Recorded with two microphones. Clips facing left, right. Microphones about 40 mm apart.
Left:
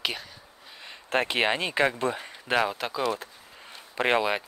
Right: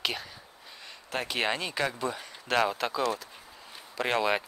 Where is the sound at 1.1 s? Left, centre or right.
Left.